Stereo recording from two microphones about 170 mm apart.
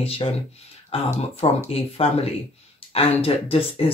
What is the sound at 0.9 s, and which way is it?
Speech, 35° left (ahead or behind).